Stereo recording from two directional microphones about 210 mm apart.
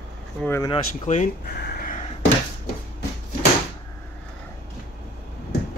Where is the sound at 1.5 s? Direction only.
50° left (ahead or behind).